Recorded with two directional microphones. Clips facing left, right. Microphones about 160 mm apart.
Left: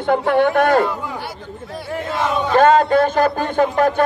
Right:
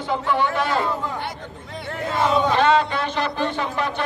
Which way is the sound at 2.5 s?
45° left (ahead or behind).